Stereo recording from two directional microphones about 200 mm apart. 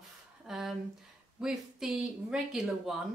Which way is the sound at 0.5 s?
Centre (ahead or behind).